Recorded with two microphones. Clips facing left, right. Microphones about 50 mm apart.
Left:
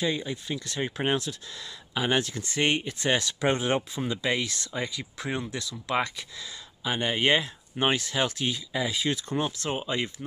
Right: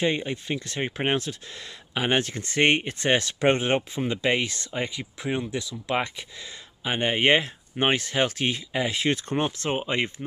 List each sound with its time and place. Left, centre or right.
0.0 s speech: right
5.2 s speech: centre; by 10.2 s right